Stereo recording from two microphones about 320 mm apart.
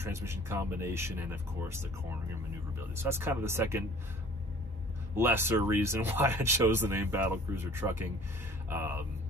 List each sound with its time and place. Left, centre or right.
0.0 s speech: centre
5.1 s speech: centre